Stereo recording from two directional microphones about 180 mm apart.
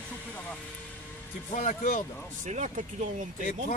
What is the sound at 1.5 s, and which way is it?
Speech, 50° left (ahead or behind).